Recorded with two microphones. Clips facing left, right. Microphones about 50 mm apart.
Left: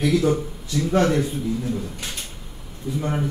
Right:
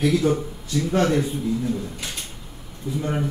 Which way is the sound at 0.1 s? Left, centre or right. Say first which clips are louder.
Left 1 dB; centre.